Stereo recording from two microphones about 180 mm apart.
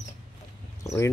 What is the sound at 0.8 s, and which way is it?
Speech, 15° left (ahead or behind).